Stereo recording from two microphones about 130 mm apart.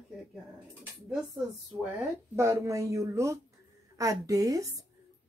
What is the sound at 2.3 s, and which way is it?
Speech, 20° right (ahead or behind).